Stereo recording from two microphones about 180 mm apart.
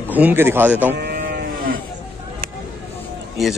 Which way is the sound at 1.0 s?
60° right (ahead or behind).